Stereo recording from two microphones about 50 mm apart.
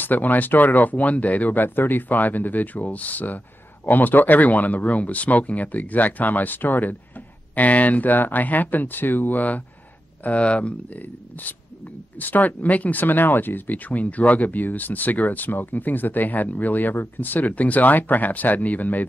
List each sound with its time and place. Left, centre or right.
0.0 s speech: left
10.2 s speech: left